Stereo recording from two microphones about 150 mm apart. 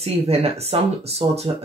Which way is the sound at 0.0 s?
40° right (ahead or behind).